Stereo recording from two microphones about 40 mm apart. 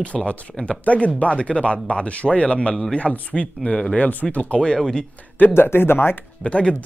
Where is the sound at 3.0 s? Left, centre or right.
Left.